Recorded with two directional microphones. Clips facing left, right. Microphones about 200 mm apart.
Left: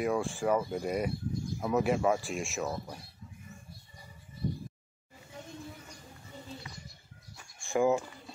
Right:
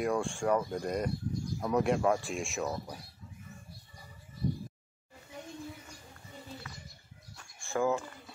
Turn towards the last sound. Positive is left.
turn(degrees=15)  # may be behind; listen again after turning